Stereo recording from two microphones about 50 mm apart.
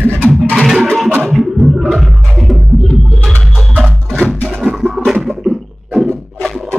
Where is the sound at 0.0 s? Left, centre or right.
Right.